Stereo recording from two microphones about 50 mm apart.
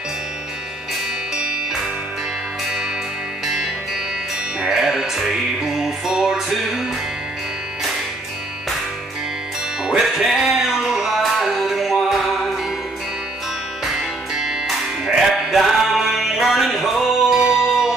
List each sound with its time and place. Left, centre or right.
1.3 s music: centre
4.6 s music: centre
9.8 s music: centre
13.8 s music: centre
15.5 s music: centre